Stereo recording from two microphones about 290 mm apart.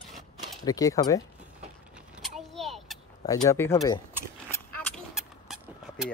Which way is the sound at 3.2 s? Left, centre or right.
Centre.